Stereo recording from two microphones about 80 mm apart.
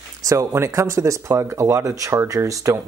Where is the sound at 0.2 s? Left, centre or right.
Right.